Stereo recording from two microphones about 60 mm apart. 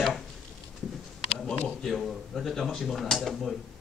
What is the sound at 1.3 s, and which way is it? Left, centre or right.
Speech, centre.